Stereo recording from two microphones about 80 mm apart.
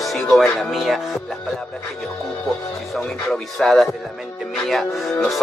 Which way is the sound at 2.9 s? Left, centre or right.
Centre.